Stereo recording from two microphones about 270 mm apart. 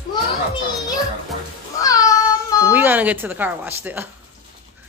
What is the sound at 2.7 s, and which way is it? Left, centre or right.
Speech, centre.